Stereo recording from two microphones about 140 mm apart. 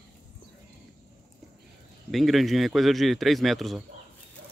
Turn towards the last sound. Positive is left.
turn(degrees=0)  # may be behind; listen again after turning